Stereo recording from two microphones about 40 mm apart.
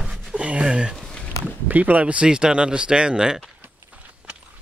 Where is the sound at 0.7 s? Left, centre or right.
Centre.